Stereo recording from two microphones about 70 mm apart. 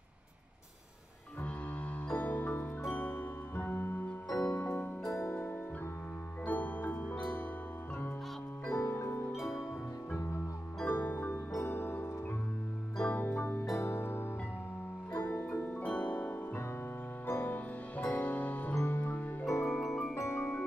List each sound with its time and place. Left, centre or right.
2.1 s music: left
4.3 s music: left
8.6 s music: left
9.4 s music: centre
10.9 s music: left
13.7 s music: left
15.5 s music: left
19.4 s music: left
19.7 s music: centre
20.2 s music: left